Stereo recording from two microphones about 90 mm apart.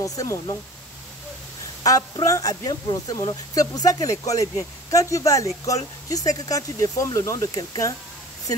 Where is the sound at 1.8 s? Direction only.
40° left (ahead or behind).